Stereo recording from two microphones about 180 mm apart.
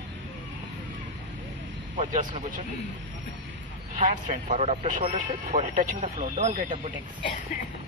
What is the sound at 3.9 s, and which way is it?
Speech, 45° right (ahead or behind).